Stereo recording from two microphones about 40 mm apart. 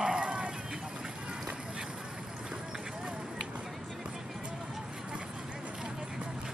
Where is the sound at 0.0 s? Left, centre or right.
Right.